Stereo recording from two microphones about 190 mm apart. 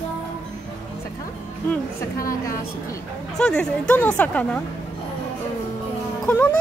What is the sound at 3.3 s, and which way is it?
A woman's voice, 5° left (ahead or behind).